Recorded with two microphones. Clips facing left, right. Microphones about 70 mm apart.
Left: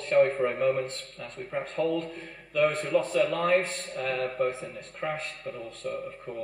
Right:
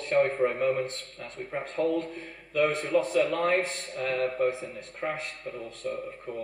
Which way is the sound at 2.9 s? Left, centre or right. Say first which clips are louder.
Even; left.